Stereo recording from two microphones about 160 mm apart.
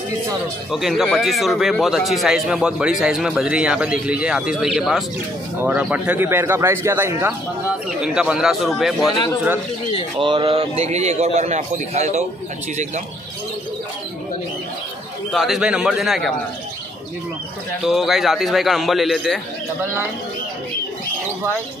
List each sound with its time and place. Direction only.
0.7 s speech: centre (ahead or behind)
10.1 s a man's voice: 30° right (ahead or behind)
15.3 s speech: centre (ahead or behind)
17.8 s speech: centre (ahead or behind)